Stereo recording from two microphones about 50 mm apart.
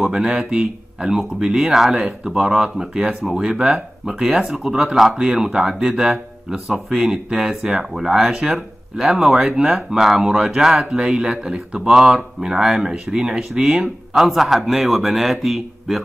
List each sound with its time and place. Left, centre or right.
0.1 s speech: centre